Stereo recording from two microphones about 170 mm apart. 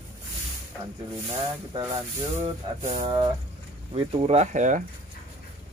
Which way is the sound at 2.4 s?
40° right (ahead or behind).